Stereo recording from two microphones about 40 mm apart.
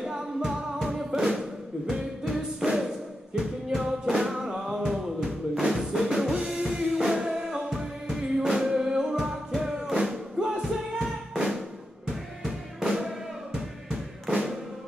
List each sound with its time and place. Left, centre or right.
0.0 s music: centre